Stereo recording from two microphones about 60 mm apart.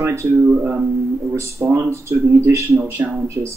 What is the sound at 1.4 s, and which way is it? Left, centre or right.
Speech, right.